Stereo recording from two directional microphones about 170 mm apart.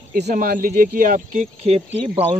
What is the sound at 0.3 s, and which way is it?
Speech, 55° right (ahead or behind).